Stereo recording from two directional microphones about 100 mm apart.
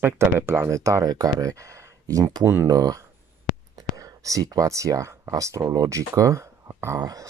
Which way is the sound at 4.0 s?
35° right (ahead or behind).